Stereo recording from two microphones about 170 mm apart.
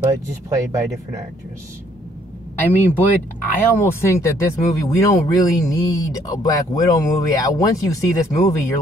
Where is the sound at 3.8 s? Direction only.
15° left (ahead or behind).